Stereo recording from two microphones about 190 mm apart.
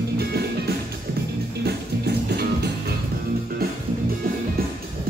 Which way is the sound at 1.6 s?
55° right (ahead or behind).